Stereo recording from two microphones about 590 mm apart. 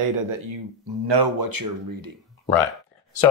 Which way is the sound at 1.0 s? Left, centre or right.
Right.